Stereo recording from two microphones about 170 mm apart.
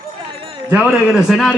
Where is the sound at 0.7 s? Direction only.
5° right (ahead or behind).